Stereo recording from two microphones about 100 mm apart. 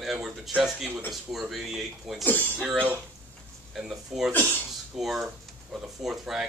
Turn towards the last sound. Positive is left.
turn(degrees=-5)  # may be behind; listen again after turning